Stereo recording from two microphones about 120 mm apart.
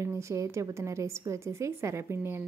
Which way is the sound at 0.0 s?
25° right (ahead or behind).